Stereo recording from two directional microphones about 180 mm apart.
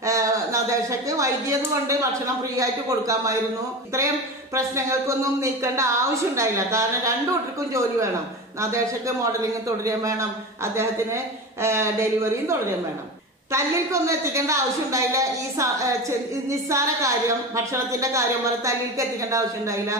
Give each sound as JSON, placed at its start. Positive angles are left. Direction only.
{"t": 0.0, "sound": "a sound", "side_deg": -15}
{"t": 2.5, "sound": "a woman's voice", "side_deg": -20}
{"t": 4.6, "sound": "a woman's voice", "side_deg": -15}
{"t": 8.5, "sound": "a woman's voice", "side_deg": -15}